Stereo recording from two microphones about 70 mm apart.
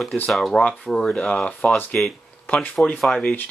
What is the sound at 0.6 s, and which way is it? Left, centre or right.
Speech, centre.